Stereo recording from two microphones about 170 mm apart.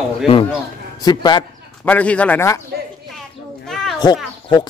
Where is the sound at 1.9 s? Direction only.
10° left (ahead or behind).